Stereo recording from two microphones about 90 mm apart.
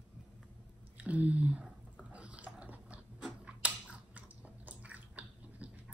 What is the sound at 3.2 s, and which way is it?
Chewing, 15° right (ahead or behind).